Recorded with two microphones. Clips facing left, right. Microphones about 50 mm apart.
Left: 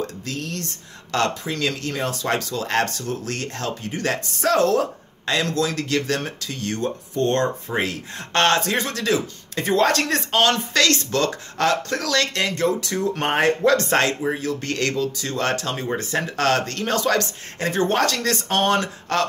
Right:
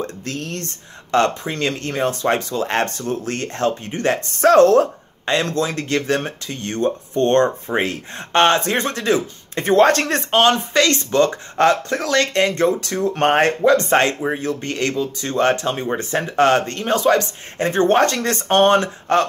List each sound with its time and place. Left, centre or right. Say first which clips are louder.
0.0 s speech: right 2 dB; right
4.3 s speech: right 8 dB; right
5.2 s speech: right 2 dB; right
8.6 s speech: right 3 dB; right
10.4 s speech: right 3 dB; right
13.2 s speech: right 6 dB; right
13.6 s speech: right 3 dB; right
17.6 s speech: right 5 dB; right